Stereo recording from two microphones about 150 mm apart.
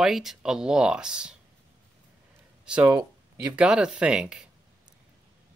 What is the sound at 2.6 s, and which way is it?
Speech, 5° right (ahead or behind).